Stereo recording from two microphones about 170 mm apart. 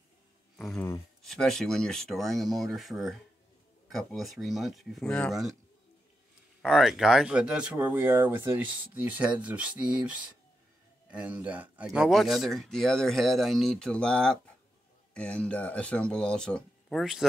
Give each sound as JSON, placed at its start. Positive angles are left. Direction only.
{"t": 0.7, "sound": "speech", "side_deg": 15}
{"t": 1.2, "sound": "speech", "side_deg": 0}
{"t": 6.6, "sound": "speech", "side_deg": 0}